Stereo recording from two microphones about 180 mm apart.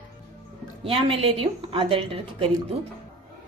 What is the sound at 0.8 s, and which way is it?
A woman's voice, 30° right (ahead or behind).